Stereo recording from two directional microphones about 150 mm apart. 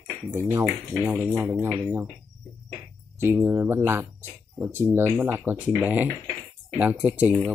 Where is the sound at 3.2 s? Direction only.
15° right (ahead or behind).